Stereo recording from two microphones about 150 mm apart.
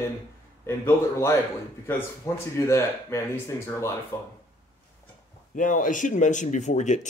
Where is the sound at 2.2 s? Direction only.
15° left (ahead or behind).